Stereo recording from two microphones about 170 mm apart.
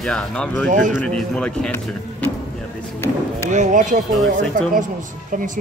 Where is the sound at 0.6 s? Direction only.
50° right (ahead or behind).